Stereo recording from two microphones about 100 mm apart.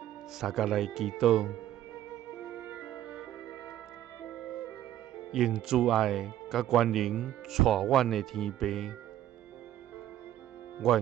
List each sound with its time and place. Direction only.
0.4 s speech: centre (ahead or behind)
2.4 s music: 20° right (ahead or behind)
5.3 s speech: 5° right (ahead or behind)
10.8 s speech: centre (ahead or behind)